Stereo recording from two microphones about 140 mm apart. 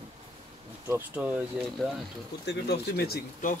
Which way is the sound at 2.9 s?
80° left.